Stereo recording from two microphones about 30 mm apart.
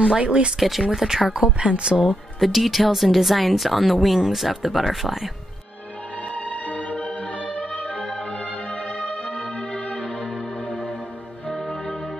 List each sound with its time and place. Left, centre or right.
0.0 s speech: right
0.6 s speech: centre
0.9 s speech: centre
1.6 s speech: right
2.4 s speech: centre
6.3 s music: left
8.0 s music: left
8.8 s music: left
9.2 s music: left
10.0 s music: left